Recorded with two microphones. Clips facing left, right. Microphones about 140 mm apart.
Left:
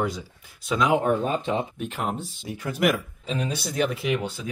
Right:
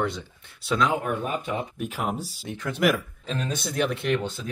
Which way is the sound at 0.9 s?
30° left (ahead or behind).